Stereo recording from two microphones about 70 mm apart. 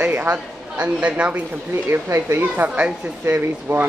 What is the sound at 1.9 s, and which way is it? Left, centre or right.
A child's voice, right.